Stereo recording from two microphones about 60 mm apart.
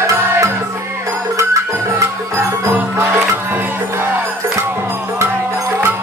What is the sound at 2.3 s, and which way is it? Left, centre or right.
Music, right.